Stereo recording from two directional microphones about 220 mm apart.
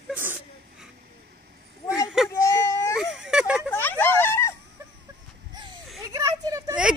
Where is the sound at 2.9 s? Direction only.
Centre (ahead or behind).